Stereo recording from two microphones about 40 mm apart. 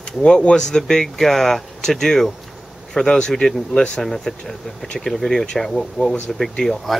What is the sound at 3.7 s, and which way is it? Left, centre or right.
Speech, left.